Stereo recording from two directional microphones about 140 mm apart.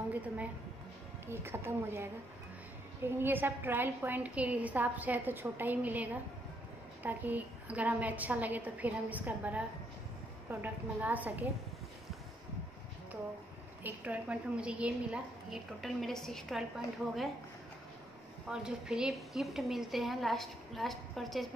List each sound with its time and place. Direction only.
1.2 s a woman's voice: 15° right (ahead or behind)
13.8 s a woman's voice: 10° right (ahead or behind)
18.5 s a woman's voice: 5° right (ahead or behind)